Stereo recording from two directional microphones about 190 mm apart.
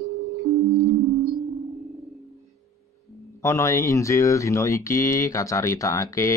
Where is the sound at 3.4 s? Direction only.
15° left (ahead or behind).